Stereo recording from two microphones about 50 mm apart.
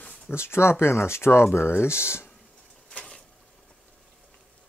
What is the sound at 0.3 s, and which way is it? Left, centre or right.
Speech, left.